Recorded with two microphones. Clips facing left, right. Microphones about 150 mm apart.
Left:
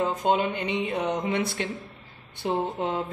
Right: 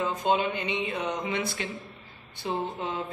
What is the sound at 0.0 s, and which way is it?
Speech, 55° left (ahead or behind).